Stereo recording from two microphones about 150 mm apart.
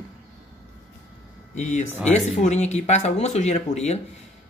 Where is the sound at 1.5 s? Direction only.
50° left (ahead or behind).